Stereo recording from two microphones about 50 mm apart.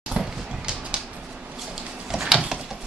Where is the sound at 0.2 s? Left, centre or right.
Centre.